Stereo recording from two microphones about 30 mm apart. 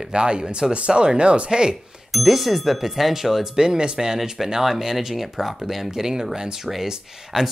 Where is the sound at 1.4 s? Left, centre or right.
Right.